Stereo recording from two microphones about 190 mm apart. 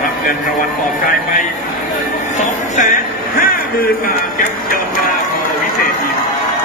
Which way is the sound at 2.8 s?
45° left (ahead or behind).